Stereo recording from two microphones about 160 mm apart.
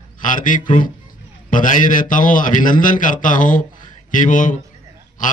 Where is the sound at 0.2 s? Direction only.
55° left (ahead or behind).